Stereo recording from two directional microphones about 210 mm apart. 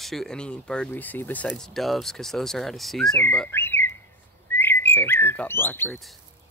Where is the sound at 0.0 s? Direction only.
Centre (ahead or behind).